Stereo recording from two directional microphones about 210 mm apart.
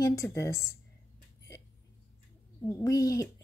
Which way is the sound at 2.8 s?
15° left (ahead or behind).